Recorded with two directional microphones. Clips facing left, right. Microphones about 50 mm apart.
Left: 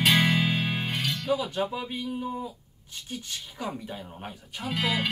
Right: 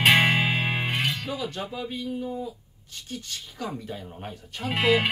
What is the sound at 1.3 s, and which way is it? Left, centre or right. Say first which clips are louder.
Speech: left 4 dB; centre.